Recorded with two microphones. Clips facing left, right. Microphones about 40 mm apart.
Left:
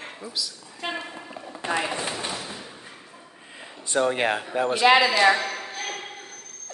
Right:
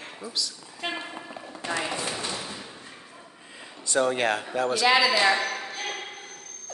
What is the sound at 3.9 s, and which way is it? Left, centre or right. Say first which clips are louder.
Speech: left 1 dB; centre.